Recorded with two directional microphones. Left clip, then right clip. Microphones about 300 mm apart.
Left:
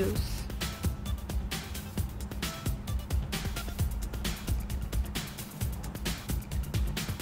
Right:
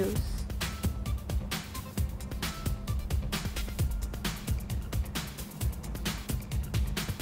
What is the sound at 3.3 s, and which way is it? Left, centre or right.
Music, centre.